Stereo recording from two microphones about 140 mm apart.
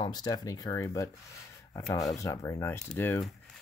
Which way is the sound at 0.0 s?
30° left (ahead or behind).